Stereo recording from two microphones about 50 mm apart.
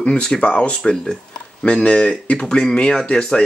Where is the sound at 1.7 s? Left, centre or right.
Left.